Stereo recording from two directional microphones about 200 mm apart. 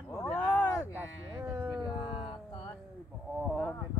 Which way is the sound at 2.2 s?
25° left (ahead or behind).